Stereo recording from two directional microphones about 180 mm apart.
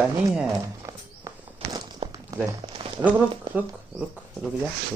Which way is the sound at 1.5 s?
30° right (ahead or behind).